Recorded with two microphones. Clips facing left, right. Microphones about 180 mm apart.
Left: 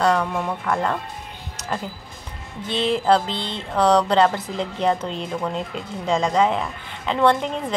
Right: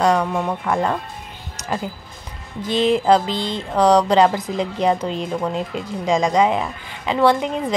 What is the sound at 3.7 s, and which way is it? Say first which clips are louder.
A woman's voice: right 3 dB; 15° right (ahead or behind).